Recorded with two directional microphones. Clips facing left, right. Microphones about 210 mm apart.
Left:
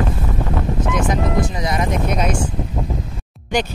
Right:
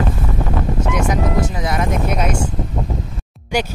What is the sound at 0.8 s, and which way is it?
Speech, 10° right (ahead or behind).